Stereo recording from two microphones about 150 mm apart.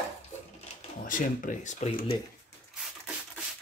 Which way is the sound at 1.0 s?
65° left (ahead or behind).